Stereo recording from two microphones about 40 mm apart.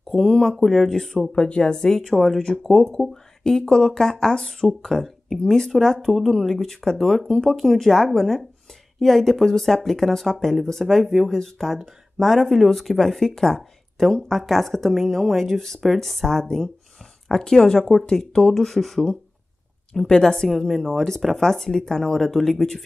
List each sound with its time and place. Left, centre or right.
0.1 s speech: centre
0.6 s speech: centre
0.8 s speech: centre
13.6 s speech: centre
19.9 s speech: centre
20.4 s speech: centre